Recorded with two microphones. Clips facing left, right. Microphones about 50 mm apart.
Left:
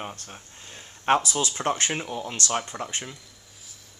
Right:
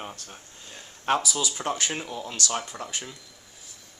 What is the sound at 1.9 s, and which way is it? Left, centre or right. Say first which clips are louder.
Speech: left 2 dB; centre.